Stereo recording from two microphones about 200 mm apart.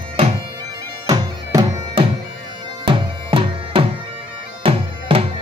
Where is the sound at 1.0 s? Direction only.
20° right (ahead or behind).